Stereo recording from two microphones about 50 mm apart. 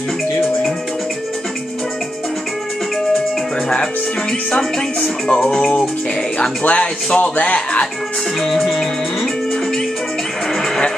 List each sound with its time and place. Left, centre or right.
3.6 s speech: centre
6.6 s speech: left
8.4 s music: centre